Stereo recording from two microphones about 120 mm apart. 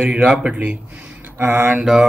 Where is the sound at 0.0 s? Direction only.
5° right (ahead or behind).